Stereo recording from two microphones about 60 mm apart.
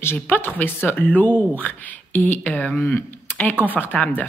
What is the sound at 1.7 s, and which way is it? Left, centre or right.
Speech, left.